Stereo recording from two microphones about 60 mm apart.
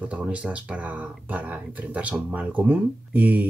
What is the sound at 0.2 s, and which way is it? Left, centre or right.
Speech, right.